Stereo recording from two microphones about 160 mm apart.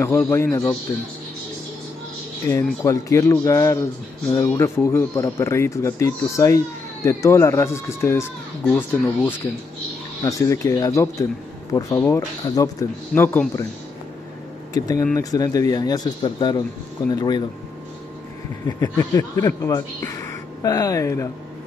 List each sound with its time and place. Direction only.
0.0 s speech: 15° left (ahead or behind)
2.4 s speech: 20° left (ahead or behind)
14.7 s speech: 25° left (ahead or behind)
18.7 s speech: 20° left (ahead or behind)